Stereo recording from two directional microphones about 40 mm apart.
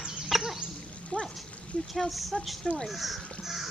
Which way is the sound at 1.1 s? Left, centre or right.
Left.